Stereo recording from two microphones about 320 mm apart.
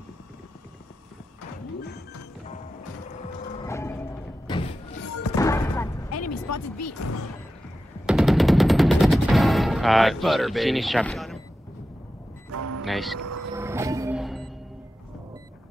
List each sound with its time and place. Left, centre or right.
3.5 s music: centre
6.1 s a sound: left
8.1 s gunshot: centre
12.4 s a sound: right
12.8 s speech: centre
13.2 s vehicle: right
13.6 s music: centre